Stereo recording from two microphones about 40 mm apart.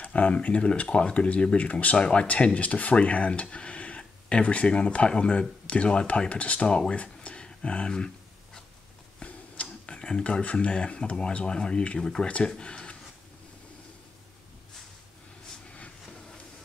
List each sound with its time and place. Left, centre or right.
0.0 s speech: left
2.0 s speech: left
9.2 s speech: left
12.0 s speech: centre